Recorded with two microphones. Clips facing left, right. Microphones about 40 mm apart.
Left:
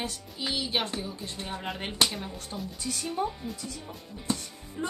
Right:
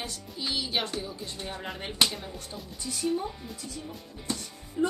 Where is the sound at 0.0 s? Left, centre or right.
Left.